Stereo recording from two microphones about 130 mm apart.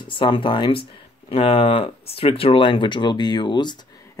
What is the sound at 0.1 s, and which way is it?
Speech, 40° left (ahead or behind).